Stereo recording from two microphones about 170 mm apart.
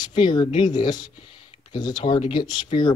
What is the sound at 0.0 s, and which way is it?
Speech, 25° left (ahead or behind).